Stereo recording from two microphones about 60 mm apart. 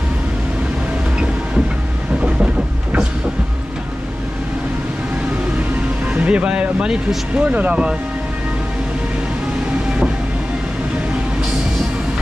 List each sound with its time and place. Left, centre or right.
2.2 s vehicle: centre
6.2 s speech: centre